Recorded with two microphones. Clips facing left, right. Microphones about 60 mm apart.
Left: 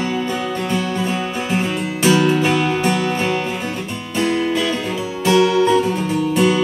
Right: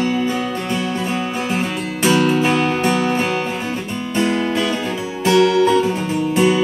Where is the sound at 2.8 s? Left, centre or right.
Centre.